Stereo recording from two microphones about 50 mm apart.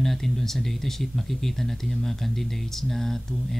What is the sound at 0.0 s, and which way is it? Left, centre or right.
Speech, centre.